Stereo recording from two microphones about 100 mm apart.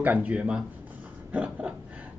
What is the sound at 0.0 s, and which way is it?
A man's voice, 15° right (ahead or behind).